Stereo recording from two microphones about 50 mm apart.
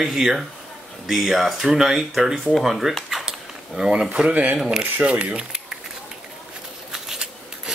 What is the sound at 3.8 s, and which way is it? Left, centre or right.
Speech, centre.